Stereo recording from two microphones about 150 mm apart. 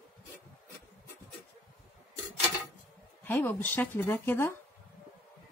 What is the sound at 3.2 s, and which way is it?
Speech, 10° left (ahead or behind).